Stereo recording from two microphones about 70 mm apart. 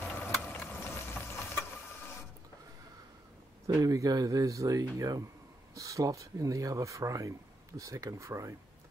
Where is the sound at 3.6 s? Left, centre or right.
Right.